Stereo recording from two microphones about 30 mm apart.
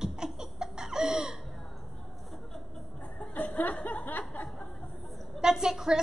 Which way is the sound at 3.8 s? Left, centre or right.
Left.